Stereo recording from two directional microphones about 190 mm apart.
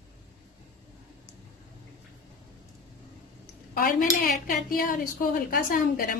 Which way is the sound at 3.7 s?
45° left (ahead or behind).